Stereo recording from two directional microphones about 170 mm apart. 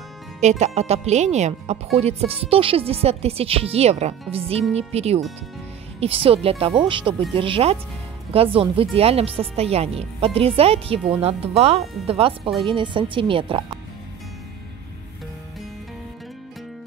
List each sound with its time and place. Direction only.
0.4 s speech: 40° right (ahead or behind)